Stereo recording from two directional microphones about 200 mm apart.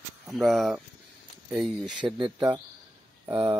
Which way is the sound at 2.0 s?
25° right (ahead or behind).